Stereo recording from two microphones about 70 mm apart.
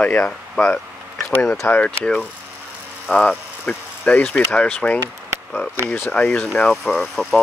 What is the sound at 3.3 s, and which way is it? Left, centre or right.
Speech, centre.